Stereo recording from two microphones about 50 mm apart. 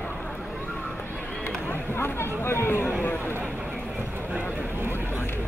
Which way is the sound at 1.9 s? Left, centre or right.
Left.